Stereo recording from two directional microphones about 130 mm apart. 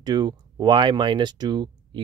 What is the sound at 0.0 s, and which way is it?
Speech, 35° right (ahead or behind).